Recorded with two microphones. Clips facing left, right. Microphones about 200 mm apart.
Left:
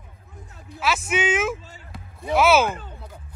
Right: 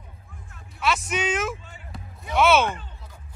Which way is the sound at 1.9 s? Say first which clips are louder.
Left 3 dB; 5° left (ahead or behind).